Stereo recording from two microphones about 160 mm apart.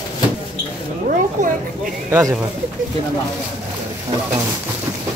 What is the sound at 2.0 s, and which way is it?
Speech, 20° right (ahead or behind).